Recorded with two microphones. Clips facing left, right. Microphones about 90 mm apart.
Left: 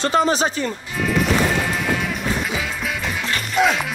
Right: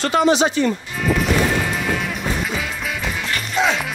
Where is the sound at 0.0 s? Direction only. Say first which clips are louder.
Right 2 dB; 35° left (ahead or behind).